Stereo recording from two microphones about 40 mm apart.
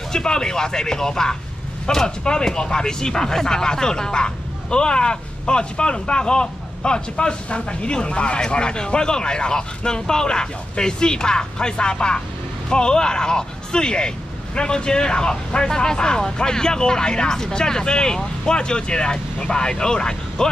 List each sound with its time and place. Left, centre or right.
0.1 s speech: centre